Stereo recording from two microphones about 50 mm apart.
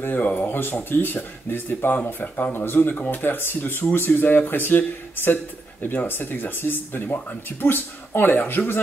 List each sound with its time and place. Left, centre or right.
0.1 s speech: left